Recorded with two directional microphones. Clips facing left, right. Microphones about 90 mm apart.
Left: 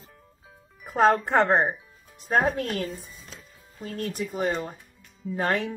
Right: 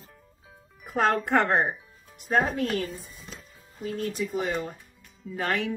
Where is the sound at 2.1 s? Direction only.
35° left (ahead or behind).